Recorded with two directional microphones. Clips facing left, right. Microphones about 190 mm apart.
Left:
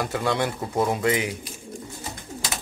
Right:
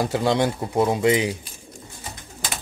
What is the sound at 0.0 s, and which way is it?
Speech, 25° right (ahead or behind).